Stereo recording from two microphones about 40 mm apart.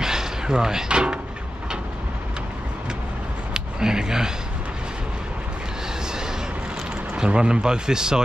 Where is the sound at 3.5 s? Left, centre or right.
Centre.